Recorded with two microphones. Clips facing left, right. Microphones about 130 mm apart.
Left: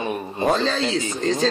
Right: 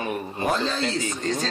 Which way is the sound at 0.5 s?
90° left.